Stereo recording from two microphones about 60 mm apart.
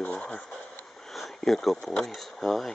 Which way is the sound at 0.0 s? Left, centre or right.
Centre.